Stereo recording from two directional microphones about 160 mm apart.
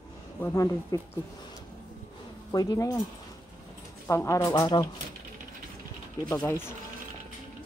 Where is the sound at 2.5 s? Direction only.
20° left (ahead or behind).